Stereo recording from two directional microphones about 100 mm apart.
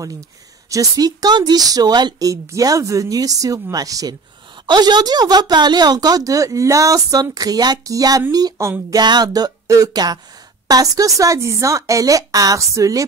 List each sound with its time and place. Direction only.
0.7 s speech: 35° right (ahead or behind)
8.5 s a sound: 25° right (ahead or behind)
8.9 s speech: 45° right (ahead or behind)